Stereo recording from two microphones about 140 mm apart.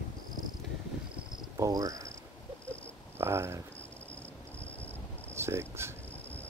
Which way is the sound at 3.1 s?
20° right (ahead or behind).